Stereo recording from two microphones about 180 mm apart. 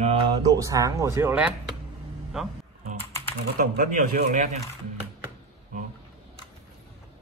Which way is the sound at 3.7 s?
50° right (ahead or behind).